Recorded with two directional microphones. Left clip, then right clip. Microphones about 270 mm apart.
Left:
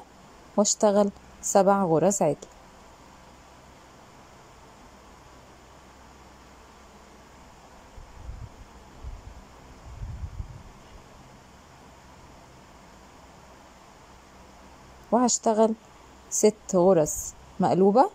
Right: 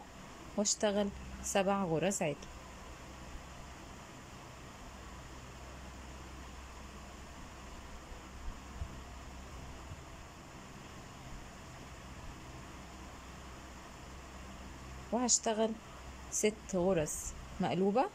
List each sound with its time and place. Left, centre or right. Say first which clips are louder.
0.6 s a woman's voice: left 12 dB; centre
15.0 s a man's voice: left 11 dB; centre